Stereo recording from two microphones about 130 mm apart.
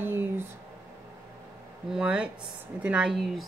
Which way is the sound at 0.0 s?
15° right (ahead or behind).